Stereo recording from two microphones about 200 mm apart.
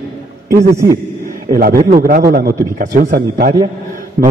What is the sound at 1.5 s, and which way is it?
A man's voice, 45° right (ahead or behind).